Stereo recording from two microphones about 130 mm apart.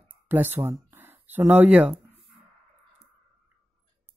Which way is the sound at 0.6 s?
15° right (ahead or behind).